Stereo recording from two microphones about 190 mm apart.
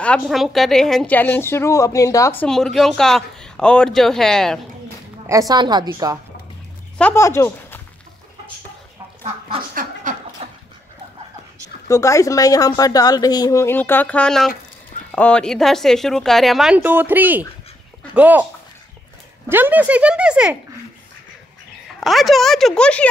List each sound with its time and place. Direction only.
0.0 s a woman's voice: centre (ahead or behind)
2.4 s speech: centre (ahead or behind)
5.2 s a woman's voice: 15° right (ahead or behind)
7.0 s speech: 10° left (ahead or behind)
9.8 s a sound: 40° right (ahead or behind)
11.9 s a woman's voice: 15° left (ahead or behind); by 18.5 s 10° right (ahead or behind)
19.5 s speech: 10° right (ahead or behind)
22.0 s speech: centre (ahead or behind)